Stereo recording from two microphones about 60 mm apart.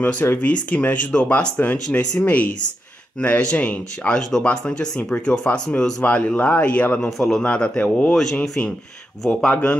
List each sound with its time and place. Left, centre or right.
0.4 s speech: left
6.0 s speech: left
7.1 s speech: centre
7.4 s speech: centre
8.1 s speech: centre
8.4 s speech: centre
9.5 s speech: left